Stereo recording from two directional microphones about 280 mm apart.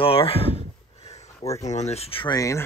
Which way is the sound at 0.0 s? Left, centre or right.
Centre.